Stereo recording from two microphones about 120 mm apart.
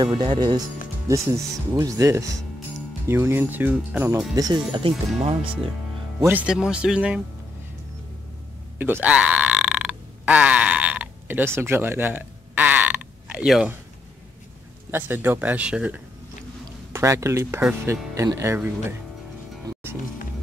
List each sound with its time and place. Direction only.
0.0 s speech: 40° right (ahead or behind)
1.0 s speech: 25° right (ahead or behind)
4.7 s speech: 45° right (ahead or behind)
6.1 s speech: 15° right (ahead or behind)
8.7 s burping: 15° right (ahead or behind)
14.9 s speech: 20° right (ahead or behind)
16.9 s speech: 25° right (ahead or behind)